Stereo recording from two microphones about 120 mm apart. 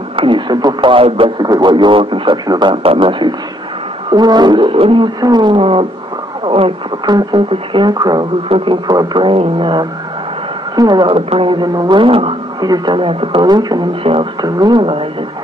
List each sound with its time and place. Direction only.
0.1 s a man's voice: 45° right (ahead or behind)
1.4 s a man's voice: 35° right (ahead or behind); by 6.7 s 50° right (ahead or behind)
7.1 s speech: 35° right (ahead or behind)
8.5 s a man's voice: 45° right (ahead or behind)
12.5 s speech: 35° right (ahead or behind)
14.0 s a man's voice: 50° right (ahead or behind)
14.4 s speech: 35° right (ahead or behind)